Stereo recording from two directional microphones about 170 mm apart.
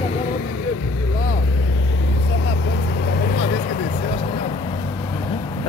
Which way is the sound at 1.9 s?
90° left.